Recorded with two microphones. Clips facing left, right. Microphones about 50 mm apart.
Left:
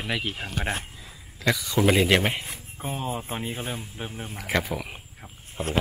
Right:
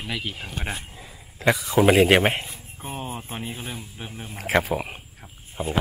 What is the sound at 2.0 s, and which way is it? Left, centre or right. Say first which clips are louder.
Speech: right 4 dB; right.